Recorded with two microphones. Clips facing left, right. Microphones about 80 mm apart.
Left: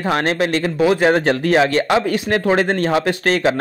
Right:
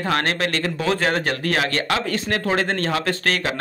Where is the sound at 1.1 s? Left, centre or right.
Left.